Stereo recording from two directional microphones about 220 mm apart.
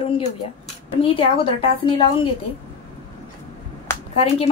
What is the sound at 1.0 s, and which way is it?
A woman's voice, 25° left (ahead or behind).